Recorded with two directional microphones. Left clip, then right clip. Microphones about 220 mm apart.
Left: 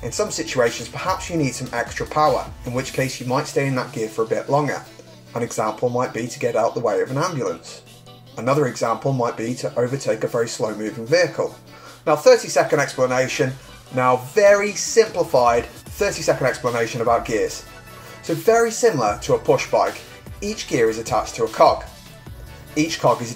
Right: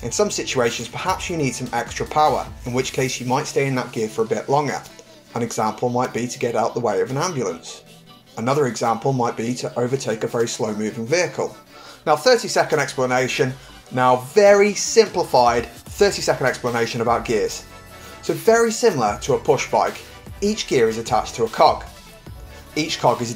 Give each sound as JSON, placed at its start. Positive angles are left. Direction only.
{"t": 0.1, "sound": "speech", "side_deg": -30}
{"t": 22.8, "sound": "speech", "side_deg": -30}